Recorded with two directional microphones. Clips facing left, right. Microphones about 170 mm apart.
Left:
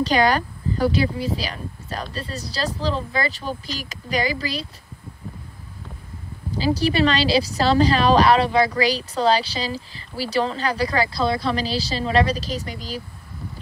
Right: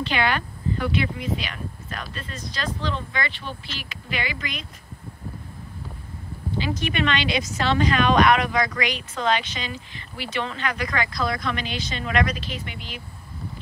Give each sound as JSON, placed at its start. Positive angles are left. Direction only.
{"t": 0.0, "sound": "a woman's voice", "side_deg": 40}
{"t": 6.5, "sound": "a woman's voice", "side_deg": 35}